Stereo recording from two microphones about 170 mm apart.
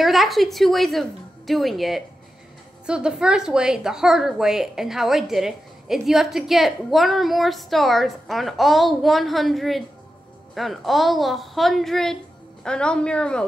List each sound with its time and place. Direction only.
0.0 s a woman's voice: centre (ahead or behind)